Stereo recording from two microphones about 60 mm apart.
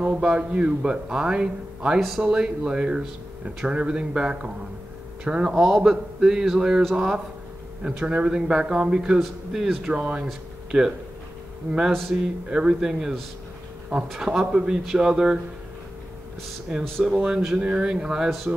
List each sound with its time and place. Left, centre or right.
0.2 s speech: centre
2.0 s a man's voice: centre
2.2 s speech: centre
7.8 s speech: centre
9.2 s a man's voice: centre
9.8 s speech: centre
11.7 s speech: right
12.1 s a man's voice: centre
14.4 s speech: centre
17.0 s speech: centre
17.6 s speech: centre